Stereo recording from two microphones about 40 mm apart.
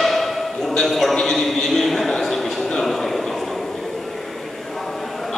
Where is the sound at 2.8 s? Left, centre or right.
Centre.